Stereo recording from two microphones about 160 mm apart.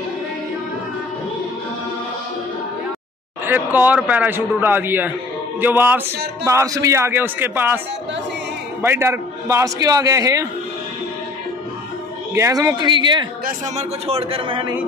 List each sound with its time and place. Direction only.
3.4 s a man's voice: 10° right (ahead or behind)
8.8 s a man's voice: 15° right (ahead or behind)
12.4 s a man's voice: 20° right (ahead or behind)
13.5 s a man's voice: 40° right (ahead or behind)